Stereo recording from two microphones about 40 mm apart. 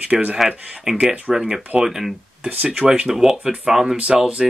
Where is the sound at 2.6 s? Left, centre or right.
Right.